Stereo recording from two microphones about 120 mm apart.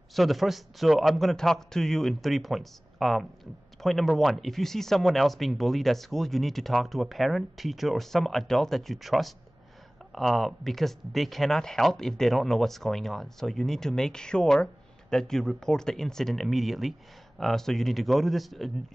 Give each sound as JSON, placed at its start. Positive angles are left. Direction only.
{"t": 0.1, "sound": "speech", "side_deg": 0}